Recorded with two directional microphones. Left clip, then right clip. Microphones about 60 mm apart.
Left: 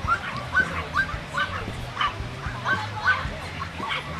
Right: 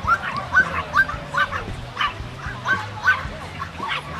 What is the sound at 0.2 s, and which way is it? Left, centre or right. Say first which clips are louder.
Dog: right 5 dB; right.